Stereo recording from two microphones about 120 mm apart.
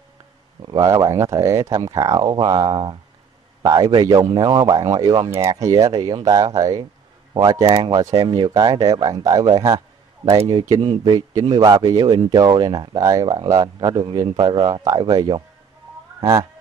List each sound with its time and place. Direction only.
0.7 s speech: 30° right (ahead or behind)
3.6 s speech: 30° right (ahead or behind)
5.5 s speech: 25° right (ahead or behind)
10.8 s speech: 40° right (ahead or behind)
16.2 s speech: 25° right (ahead or behind)